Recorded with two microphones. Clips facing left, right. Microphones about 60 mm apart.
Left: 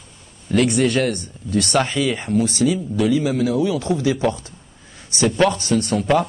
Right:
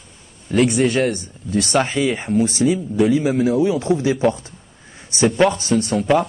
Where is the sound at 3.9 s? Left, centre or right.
Right.